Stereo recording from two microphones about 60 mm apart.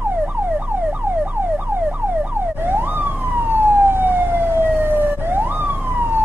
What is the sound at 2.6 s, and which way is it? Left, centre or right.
Emergency vehicle, right.